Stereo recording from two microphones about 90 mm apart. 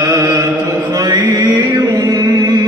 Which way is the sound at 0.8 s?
40° right (ahead or behind).